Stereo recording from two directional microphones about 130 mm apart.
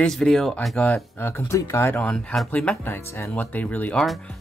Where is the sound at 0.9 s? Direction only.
20° left (ahead or behind).